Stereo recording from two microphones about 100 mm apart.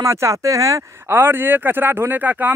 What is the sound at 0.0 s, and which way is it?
Speech, 30° right (ahead or behind).